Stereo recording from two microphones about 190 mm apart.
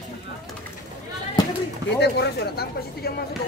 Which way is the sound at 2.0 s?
60° left (ahead or behind).